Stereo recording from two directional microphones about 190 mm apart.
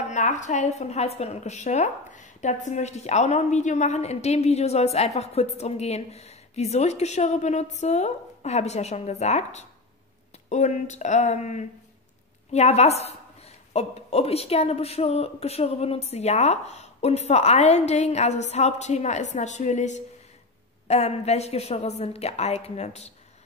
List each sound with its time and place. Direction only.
0.0 s a woman's voice: 40° left (ahead or behind)